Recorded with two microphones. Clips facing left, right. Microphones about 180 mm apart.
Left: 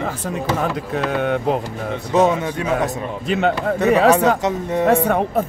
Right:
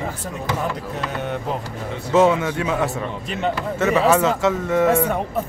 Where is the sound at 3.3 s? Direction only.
80° left.